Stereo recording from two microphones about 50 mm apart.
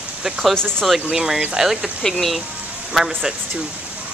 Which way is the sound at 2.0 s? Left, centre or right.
Centre.